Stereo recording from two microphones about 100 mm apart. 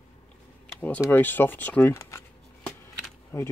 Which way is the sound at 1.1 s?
20° left (ahead or behind).